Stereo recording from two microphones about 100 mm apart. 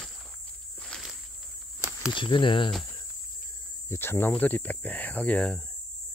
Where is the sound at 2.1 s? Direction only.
55° left (ahead or behind).